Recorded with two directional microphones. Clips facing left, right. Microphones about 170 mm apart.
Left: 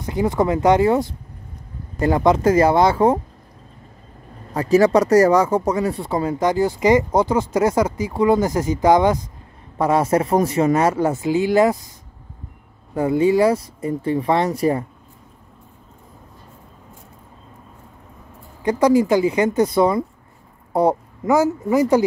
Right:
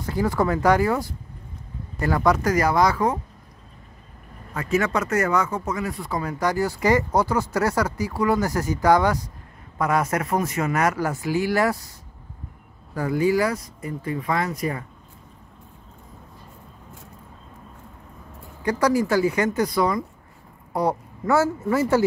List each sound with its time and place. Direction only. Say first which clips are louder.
0.0 s speech: left 3 dB; 20° left (ahead or behind)
4.6 s speech: left 9 dB; 35° left (ahead or behind)
12.9 s speech: left 5 dB; 25° left (ahead or behind)
18.6 s speech: left 5 dB; 20° left (ahead or behind)